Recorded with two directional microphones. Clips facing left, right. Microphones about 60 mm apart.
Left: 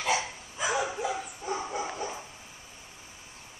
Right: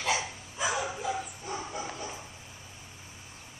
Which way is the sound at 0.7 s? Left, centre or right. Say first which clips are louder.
Left 2 dB; centre.